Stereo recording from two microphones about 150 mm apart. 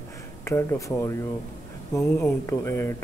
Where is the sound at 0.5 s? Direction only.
20° left (ahead or behind).